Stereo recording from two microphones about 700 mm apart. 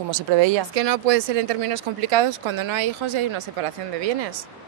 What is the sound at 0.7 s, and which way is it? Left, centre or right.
Speech, right.